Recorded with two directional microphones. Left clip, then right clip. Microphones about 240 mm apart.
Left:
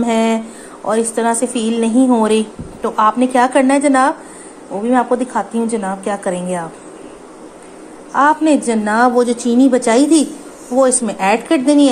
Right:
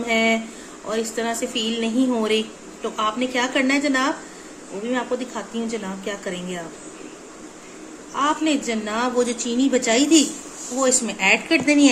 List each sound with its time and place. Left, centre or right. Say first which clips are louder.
0.0 s a sound: left 4 dB; left
0.8 s a woman's voice: left 9 dB; centre
8.1 s a woman's voice: left 9 dB; left